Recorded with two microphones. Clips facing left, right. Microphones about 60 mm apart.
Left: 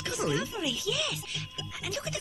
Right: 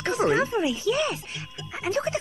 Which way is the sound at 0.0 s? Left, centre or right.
Right.